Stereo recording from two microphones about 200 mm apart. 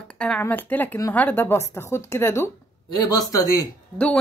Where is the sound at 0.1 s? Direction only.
5° left (ahead or behind).